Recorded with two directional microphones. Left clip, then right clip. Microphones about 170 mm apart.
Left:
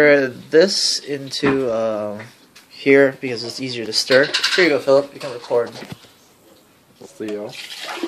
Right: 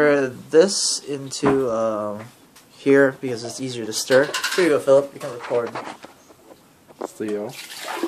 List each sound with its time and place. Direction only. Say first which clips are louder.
0.0 s speech: left 4 dB; 10° left (ahead or behind)
4.1 s speech: left 2 dB; 15° left (ahead or behind)